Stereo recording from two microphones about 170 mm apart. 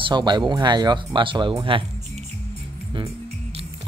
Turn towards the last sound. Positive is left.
turn(degrees=-30)  # may be behind; listen again after turning